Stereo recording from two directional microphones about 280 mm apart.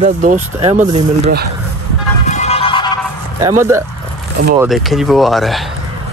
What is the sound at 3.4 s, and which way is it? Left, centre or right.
Speech, centre.